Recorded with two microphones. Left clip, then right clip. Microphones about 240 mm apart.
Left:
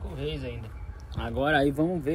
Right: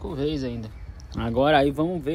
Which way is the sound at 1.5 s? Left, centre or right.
Centre.